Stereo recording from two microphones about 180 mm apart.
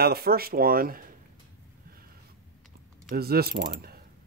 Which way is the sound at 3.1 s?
60° right (ahead or behind).